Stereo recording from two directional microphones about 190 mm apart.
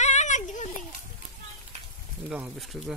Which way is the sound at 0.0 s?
40° left (ahead or behind).